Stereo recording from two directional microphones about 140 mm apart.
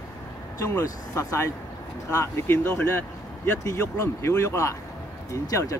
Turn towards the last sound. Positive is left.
turn(degrees=25)  # may be behind; listen again after turning